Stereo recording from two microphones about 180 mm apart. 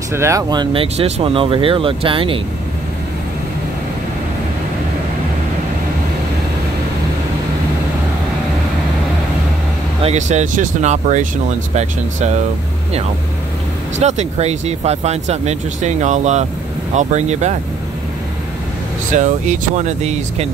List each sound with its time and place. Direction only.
0.1 s speech: 15° right (ahead or behind)
10.0 s speech: 40° right (ahead or behind)
13.9 s speech: 40° right (ahead or behind)
19.1 s speech: 45° right (ahead or behind)